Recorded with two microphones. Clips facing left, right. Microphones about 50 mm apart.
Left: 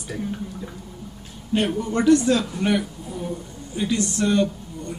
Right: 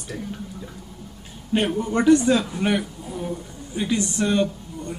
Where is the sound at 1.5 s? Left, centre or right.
Right.